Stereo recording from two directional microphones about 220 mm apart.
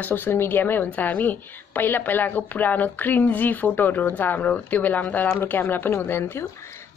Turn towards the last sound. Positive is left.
turn(degrees=10)  # may be behind; listen again after turning